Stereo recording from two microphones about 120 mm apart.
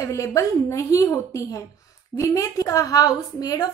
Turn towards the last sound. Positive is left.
turn(degrees=30)  # may be behind; listen again after turning